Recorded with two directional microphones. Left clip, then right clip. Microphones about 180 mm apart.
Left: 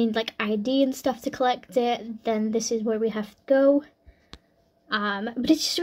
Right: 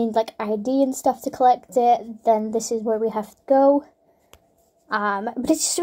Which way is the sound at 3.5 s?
20° left (ahead or behind).